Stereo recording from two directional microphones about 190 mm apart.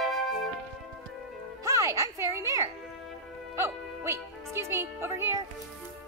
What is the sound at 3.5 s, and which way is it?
A woman's voice, 15° right (ahead or behind).